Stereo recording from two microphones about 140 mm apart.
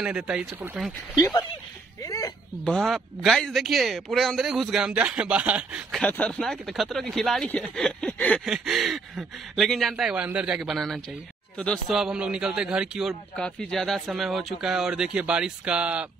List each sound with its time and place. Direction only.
0.0 s speech: 5° right (ahead or behind)
2.0 s a sound: 25° left (ahead or behind)
2.6 s speech: centre (ahead or behind)
5.9 s speech: 10° left (ahead or behind)
8.5 s speech: centre (ahead or behind)
13.4 s speech: 5° left (ahead or behind)